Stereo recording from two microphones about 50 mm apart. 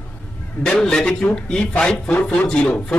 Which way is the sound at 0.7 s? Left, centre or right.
Centre.